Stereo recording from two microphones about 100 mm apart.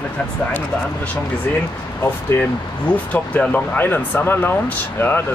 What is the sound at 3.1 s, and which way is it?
Speech, 15° left (ahead or behind).